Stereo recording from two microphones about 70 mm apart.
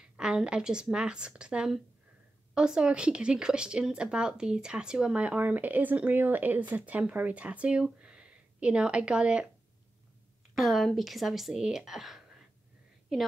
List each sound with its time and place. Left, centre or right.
0.0 s speech: centre
10.5 s a woman's voice: centre